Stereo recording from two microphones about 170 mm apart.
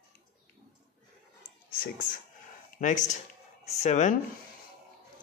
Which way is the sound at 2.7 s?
50° left (ahead or behind).